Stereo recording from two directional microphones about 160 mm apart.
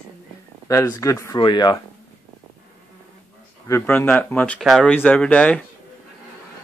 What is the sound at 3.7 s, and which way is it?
Speech, 15° left (ahead or behind).